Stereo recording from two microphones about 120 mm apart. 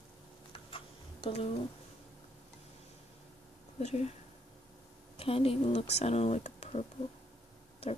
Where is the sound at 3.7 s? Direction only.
65° left (ahead or behind).